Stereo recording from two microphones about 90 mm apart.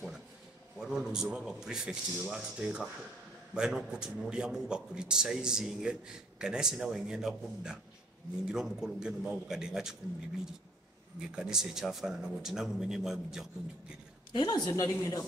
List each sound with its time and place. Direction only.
0.7 s a man's voice: 5° right (ahead or behind)
11.1 s speech: 5° right (ahead or behind)
14.3 s a woman's voice: 50° left (ahead or behind)
14.7 s speech: 35° left (ahead or behind)